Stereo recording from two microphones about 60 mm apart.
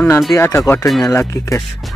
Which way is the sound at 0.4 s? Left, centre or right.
Left.